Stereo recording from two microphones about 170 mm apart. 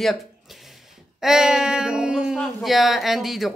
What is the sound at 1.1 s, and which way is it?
Speech, 5° right (ahead or behind).